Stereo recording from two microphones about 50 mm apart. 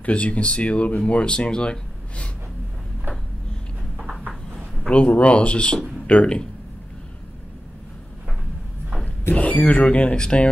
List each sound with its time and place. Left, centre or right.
0.0 s speech: left
4.8 s speech: left
9.3 s speech: left